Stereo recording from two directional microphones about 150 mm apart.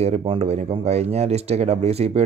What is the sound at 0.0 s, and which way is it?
A man's voice, 45° right (ahead or behind).